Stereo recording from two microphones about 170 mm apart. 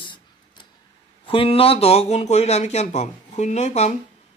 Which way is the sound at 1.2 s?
30° left (ahead or behind).